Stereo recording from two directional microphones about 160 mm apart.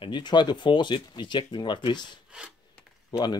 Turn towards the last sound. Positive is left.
turn(degrees=25)  # may be behind; listen again after turning